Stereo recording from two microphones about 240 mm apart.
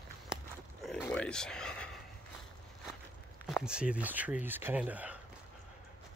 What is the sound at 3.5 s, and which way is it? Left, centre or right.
Speech, centre.